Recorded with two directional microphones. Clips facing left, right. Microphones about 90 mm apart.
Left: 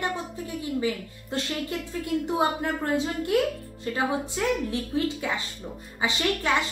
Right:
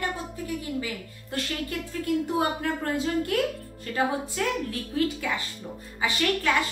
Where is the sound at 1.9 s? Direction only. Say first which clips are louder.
Right 2 dB; 20° left (ahead or behind).